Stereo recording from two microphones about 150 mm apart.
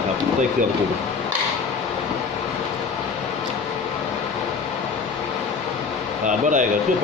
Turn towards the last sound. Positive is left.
turn(degrees=-60)  # may be behind; listen again after turning